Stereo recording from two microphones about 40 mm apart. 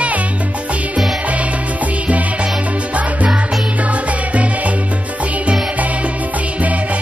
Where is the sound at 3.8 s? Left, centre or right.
Right.